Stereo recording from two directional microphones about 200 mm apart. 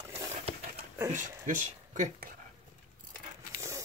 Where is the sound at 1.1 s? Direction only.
40° right (ahead or behind).